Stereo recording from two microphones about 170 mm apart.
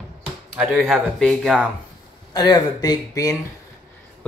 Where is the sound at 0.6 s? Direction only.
5° right (ahead or behind).